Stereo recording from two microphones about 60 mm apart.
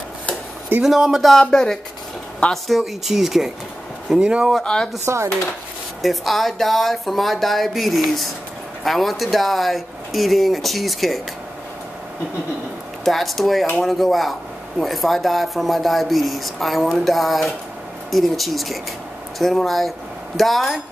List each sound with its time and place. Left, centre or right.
0.8 s speech: centre
2.8 s speech: centre
4.2 s speech: centre
5.0 s speech: right
6.0 s speech: centre
13.0 s speech: centre